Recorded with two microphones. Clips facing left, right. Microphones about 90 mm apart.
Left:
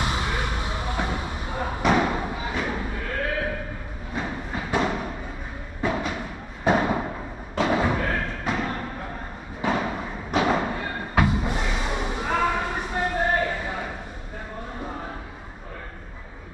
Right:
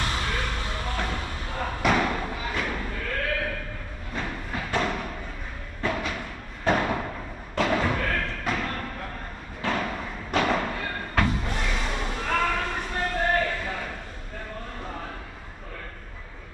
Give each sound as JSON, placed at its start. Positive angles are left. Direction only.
{"t": 0.0, "sound": "basketball bounce", "side_deg": 15}
{"t": 1.9, "sound": "a sound", "side_deg": 15}
{"t": 7.5, "sound": "thump", "side_deg": 15}